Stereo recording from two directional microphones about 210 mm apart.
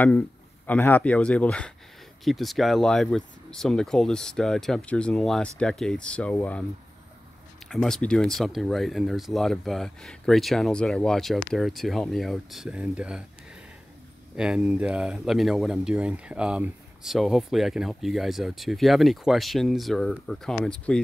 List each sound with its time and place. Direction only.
0.7 s speech: 10° left (ahead or behind)
7.6 s speech: centre (ahead or behind)
14.3 s speech: 5° right (ahead or behind)